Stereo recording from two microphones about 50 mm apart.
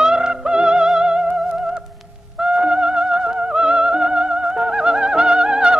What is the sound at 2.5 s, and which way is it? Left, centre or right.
Music, centre.